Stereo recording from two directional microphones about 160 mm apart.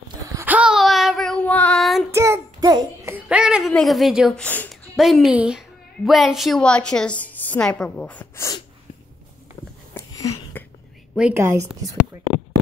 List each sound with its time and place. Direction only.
0.3 s child singing: 15° right (ahead or behind)
2.0 s child singing: 15° right (ahead or behind)
4.4 s speech: 10° left (ahead or behind)
4.9 s a woman's voice: centre (ahead or behind)
9.9 s a sound: 15° left (ahead or behind)
11.1 s a woman's voice: 10° right (ahead or behind)